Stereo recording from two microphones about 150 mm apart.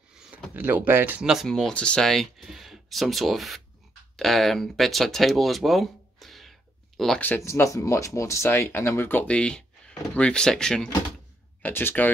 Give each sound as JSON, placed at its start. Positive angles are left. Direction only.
{"t": 0.6, "sound": "speech", "side_deg": -10}